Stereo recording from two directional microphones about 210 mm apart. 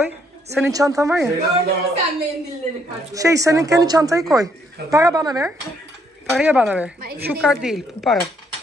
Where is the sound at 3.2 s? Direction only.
15° right (ahead or behind).